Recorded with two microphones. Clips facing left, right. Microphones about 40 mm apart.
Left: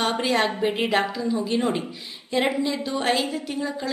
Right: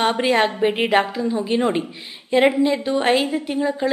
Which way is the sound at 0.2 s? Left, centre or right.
Right.